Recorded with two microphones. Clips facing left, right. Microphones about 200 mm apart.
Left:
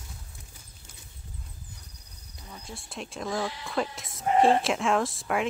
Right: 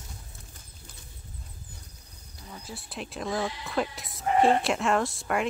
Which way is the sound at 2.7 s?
Centre (ahead or behind).